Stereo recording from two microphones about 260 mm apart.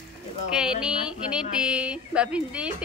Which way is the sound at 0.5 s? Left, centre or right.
Centre.